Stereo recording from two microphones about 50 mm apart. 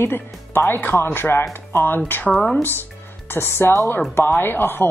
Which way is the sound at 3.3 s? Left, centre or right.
Left.